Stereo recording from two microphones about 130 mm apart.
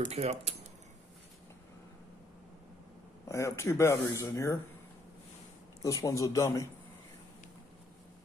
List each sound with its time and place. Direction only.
0.0 s speech: 60° right (ahead or behind)
3.3 s speech: 20° left (ahead or behind)
5.8 s speech: 25° left (ahead or behind)